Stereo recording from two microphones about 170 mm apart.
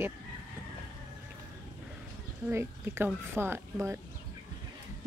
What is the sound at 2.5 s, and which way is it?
A woman's voice, 15° right (ahead or behind).